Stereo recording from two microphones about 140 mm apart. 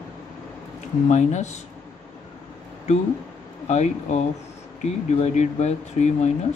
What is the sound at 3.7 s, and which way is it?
Speech, 55° left (ahead or behind).